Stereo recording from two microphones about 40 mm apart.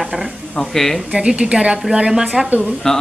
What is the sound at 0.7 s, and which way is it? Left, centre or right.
Speech, centre.